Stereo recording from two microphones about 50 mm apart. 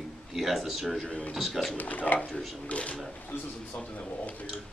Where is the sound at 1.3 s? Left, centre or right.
Centre.